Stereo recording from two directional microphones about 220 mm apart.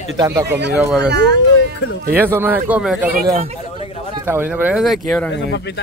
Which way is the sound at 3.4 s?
25° right (ahead or behind).